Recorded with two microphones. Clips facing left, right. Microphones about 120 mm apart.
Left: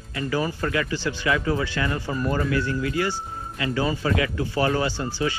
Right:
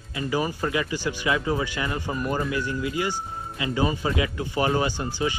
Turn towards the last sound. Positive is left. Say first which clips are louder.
# left 1 dB
turn(degrees=-20)  # may be behind; listen again after turning